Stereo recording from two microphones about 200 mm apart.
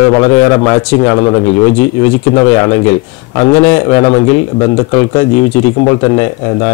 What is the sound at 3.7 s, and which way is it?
Speech, 20° left (ahead or behind).